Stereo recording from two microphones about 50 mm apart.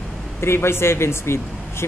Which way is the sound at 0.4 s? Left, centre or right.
Left.